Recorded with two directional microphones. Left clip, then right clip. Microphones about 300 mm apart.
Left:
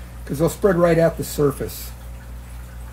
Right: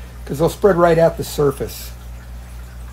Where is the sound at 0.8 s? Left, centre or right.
Centre.